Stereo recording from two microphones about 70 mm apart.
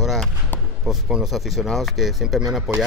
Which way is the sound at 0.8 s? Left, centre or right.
Centre.